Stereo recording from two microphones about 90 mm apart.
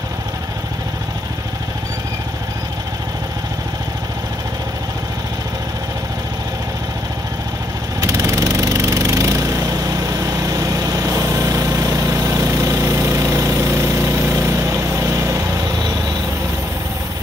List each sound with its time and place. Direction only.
8.0 s lawn mower: 35° right (ahead or behind)